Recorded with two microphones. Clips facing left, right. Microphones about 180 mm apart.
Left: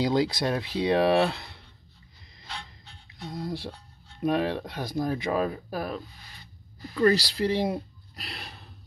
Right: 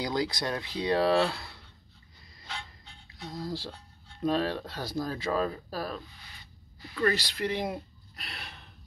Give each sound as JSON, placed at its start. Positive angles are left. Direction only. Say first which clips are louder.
{"t": 0.0, "sound": "speech", "louder": "left 6 dB", "side_deg": 25}
{"t": 3.3, "sound": "speech", "louder": "left 2 dB", "side_deg": 25}
{"t": 6.8, "sound": "speech", "louder": "left 6 dB", "side_deg": 40}
{"t": 8.2, "sound": "gasp", "louder": "left 3 dB", "side_deg": 35}